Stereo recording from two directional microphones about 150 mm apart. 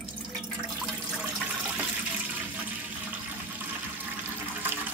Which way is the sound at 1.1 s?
5° right (ahead or behind).